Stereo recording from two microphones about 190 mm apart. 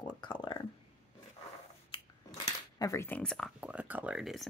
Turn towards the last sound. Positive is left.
turn(degrees=-5)  # may be behind; listen again after turning